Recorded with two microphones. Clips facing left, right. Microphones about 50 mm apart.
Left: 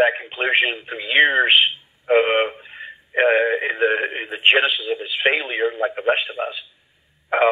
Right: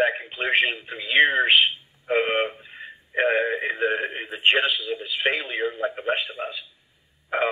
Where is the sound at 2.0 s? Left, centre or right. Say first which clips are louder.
Left 6 dB; left.